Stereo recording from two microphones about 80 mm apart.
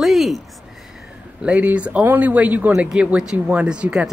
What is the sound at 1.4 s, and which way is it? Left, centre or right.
Speech, centre.